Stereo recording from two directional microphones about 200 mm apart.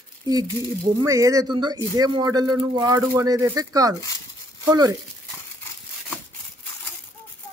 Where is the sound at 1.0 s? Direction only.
15° right (ahead or behind).